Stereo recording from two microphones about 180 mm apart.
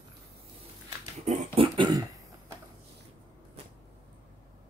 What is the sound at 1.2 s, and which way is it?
Dog, 40° right (ahead or behind).